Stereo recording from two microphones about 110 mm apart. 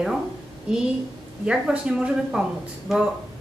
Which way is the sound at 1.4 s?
5° right (ahead or behind).